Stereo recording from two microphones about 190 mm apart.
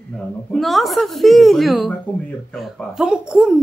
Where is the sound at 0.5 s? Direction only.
Centre (ahead or behind).